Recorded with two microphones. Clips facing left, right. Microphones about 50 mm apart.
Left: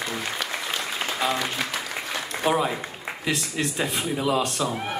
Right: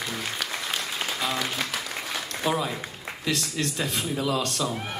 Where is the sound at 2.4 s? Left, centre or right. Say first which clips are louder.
Left 4 dB; centre.